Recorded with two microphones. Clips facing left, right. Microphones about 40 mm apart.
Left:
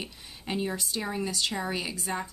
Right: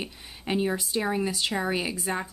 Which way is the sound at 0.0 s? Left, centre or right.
Centre.